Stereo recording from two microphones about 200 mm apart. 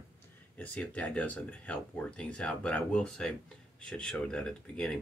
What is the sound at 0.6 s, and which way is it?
Speech, 5° left (ahead or behind).